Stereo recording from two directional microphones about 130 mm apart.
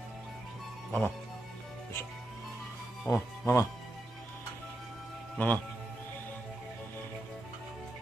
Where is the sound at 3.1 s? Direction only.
25° left (ahead or behind).